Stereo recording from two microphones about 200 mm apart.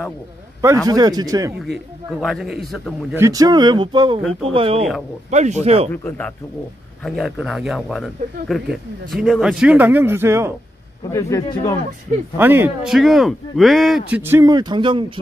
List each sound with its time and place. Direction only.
0.8 s speech: 20° right (ahead or behind)
2.0 s speech: centre (ahead or behind)
3.2 s speech: 15° right (ahead or behind); by 5.9 s 30° right (ahead or behind)
5.9 s a man's voice: 10° left (ahead or behind); by 10.5 s 15° right (ahead or behind)
11.1 s a man's voice: 15° left (ahead or behind)
12.4 s a man's voice: 10° right (ahead or behind)